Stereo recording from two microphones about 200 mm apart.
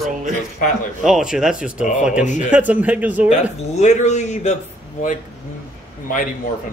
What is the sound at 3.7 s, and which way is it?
Speech, 35° left (ahead or behind).